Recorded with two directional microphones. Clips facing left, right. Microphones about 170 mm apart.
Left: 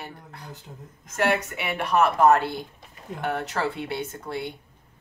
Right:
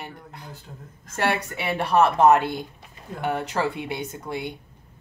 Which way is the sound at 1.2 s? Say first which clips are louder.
Left 1 dB; 30° right (ahead or behind).